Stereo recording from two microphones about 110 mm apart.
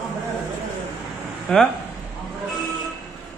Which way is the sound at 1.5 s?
5° left (ahead or behind).